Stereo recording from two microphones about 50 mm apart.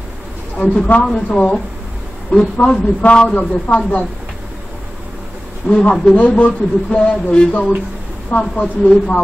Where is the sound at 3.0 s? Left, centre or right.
Left.